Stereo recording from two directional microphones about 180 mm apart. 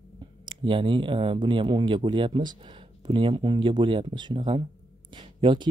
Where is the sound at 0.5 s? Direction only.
30° right (ahead or behind).